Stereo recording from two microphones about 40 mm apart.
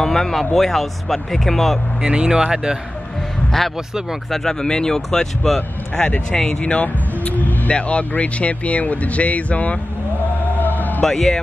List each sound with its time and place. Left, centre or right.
0.0 s speech: centre
2.0 s speech: right
4.3 s speech: centre
6.5 s speech: left
10.6 s music: left
11.1 s speech: centre